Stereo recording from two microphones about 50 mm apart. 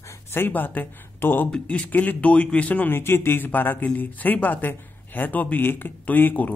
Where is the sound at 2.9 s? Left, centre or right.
Left.